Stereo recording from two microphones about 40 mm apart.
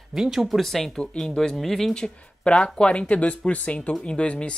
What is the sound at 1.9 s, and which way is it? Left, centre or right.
Speech, left.